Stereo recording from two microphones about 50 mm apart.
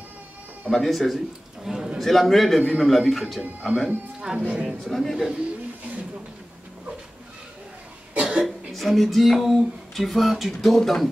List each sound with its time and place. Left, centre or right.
0.7 s speech: centre
2.0 s speech: centre
4.5 s speech: right
4.8 s speech: centre
8.2 s cough: centre
8.7 s speech: centre